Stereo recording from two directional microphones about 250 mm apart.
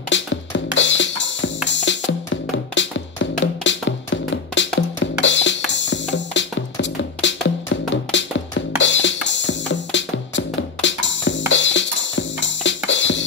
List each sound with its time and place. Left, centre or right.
0.1 s music: left